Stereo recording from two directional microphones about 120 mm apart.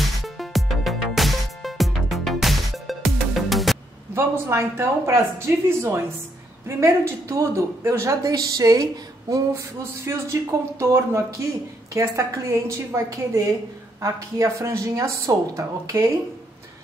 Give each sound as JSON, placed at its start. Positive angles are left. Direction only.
{"t": 0.0, "sound": "music", "side_deg": 0}
{"t": 4.1, "sound": "speech", "side_deg": -20}